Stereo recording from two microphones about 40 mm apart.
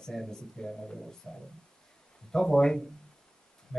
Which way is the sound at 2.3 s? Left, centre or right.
Centre.